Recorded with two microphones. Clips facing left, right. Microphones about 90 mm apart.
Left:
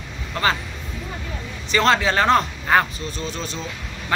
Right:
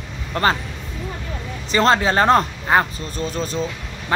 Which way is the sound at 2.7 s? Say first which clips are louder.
Right 1 dB; 25° right (ahead or behind).